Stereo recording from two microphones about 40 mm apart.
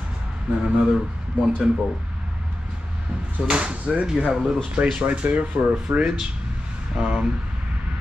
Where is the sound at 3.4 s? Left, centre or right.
Right.